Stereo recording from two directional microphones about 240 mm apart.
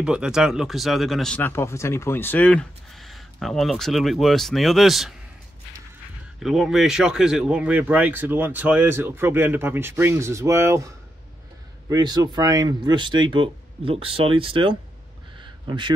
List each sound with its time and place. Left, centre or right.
0.0 s speech: centre
6.4 s speech: centre
11.9 s speech: centre
15.4 s a sound: centre